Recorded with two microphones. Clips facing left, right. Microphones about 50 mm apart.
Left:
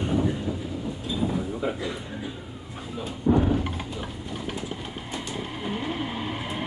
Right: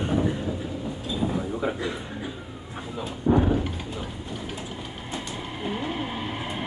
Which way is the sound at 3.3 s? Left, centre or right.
Centre.